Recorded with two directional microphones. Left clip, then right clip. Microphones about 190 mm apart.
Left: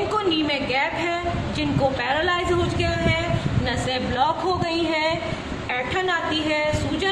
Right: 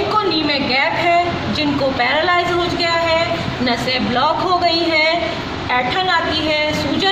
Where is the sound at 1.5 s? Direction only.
40° left (ahead or behind).